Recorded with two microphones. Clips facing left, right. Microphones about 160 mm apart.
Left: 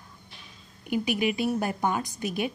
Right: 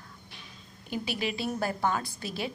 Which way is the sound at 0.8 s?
15° left (ahead or behind).